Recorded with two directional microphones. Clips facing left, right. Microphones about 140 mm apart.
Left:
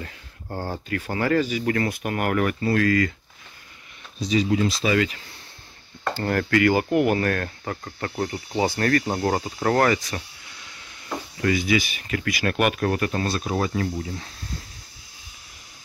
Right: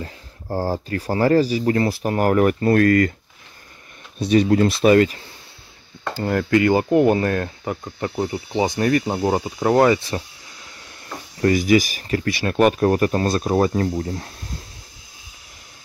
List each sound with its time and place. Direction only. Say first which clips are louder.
0.0 s speech: right 4 dB; 35° right (ahead or behind)
4.2 s speech: right 6 dB; 60° right (ahead or behind)
4.9 s speech: right 7 dB; 40° right (ahead or behind)
6.2 s speech: right 3 dB; 20° right (ahead or behind)
9.9 s speech: right 4 dB; 30° right (ahead or behind)
11.4 s speech: right 6 dB; 45° right (ahead or behind)